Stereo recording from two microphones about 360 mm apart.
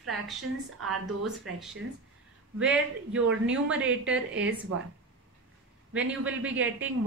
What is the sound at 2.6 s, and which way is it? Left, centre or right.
A woman's voice, centre.